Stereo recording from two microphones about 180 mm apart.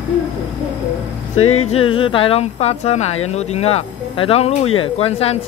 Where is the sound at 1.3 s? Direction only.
35° left (ahead or behind).